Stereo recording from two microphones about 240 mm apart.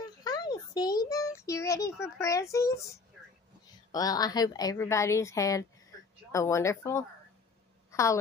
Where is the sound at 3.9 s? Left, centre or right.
Centre.